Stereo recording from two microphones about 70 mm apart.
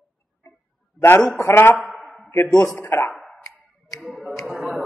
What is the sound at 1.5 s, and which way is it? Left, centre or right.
Speech, left.